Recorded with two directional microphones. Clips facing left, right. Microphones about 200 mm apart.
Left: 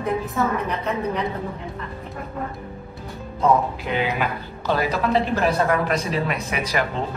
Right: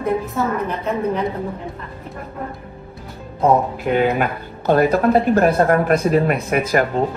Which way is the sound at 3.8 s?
50° right (ahead or behind).